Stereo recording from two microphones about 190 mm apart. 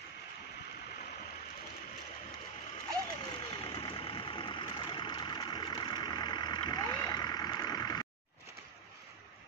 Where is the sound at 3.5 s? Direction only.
25° left (ahead or behind).